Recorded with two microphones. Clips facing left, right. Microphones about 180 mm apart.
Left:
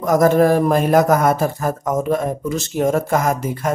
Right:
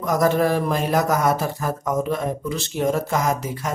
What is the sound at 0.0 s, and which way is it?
A man's voice, 45° left (ahead or behind).